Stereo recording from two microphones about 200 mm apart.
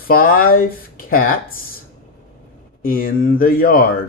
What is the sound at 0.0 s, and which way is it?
Speech, 45° left (ahead or behind).